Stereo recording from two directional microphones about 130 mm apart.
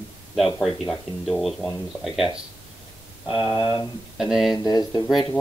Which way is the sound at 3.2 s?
35° left (ahead or behind).